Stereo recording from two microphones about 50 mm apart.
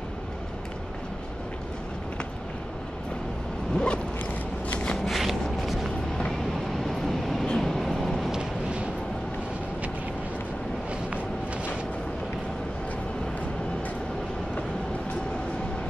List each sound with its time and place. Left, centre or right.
3.7 s zipper: left
4.6 s walk: centre
4.9 s a sound: centre
6.9 s vehicle: centre
8.3 s vehicle: centre